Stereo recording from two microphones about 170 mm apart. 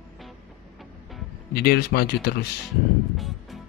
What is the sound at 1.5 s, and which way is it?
Speech, 65° left (ahead or behind).